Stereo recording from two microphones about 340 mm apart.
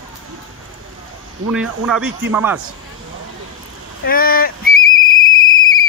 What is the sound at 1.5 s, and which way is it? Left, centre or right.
Speech, centre.